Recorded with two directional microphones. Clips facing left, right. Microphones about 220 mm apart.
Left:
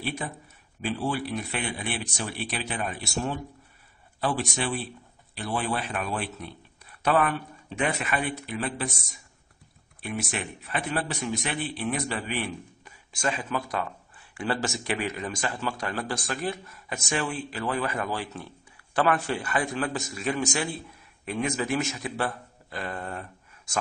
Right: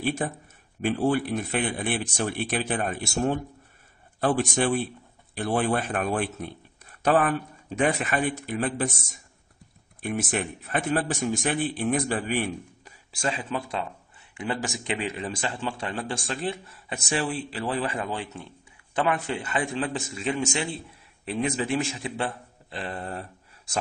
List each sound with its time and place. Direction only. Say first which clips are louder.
0.0 s speech: right 5 dB; 50° right (ahead or behind)
10.0 s a man's voice: right 4 dB; 50° right (ahead or behind); by 23.2 s 30° right (ahead or behind)